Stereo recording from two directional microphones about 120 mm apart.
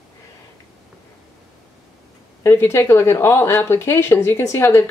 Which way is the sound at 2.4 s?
20° left (ahead or behind).